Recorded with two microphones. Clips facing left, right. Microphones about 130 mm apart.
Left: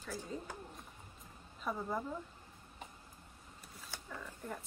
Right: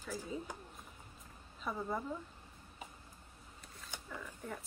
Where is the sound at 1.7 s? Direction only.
Centre (ahead or behind).